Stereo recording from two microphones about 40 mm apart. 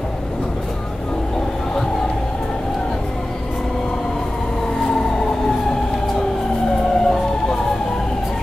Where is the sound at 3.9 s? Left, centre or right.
Centre.